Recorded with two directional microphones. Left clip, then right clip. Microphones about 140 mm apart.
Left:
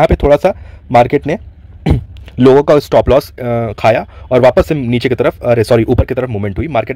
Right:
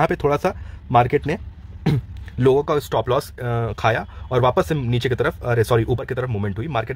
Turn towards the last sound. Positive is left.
turn(degrees=30)  # may be behind; listen again after turning